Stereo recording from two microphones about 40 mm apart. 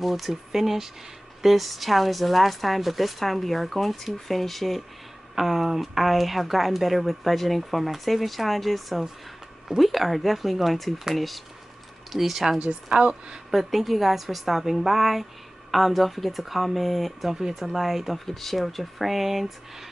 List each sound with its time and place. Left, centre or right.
0.0 s speech: centre
12.9 s speech: right
13.5 s speech: centre